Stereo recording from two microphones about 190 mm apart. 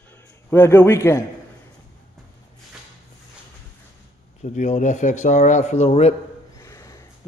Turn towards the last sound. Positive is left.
turn(degrees=15)  # may be behind; listen again after turning